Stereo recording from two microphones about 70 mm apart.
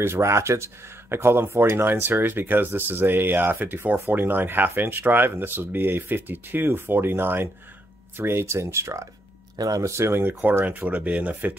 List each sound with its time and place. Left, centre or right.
0.0 s speech: right
9.6 s speech: right
9.8 s speech: right